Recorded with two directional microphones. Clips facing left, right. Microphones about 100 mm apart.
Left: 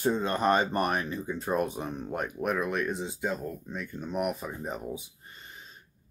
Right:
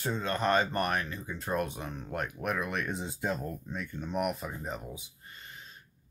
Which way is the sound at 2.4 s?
5° left (ahead or behind).